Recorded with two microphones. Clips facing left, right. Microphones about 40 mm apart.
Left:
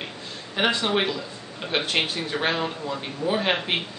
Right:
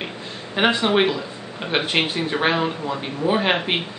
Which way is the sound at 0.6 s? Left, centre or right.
Centre.